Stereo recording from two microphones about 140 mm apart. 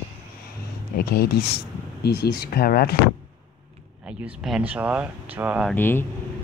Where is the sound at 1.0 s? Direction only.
90° left.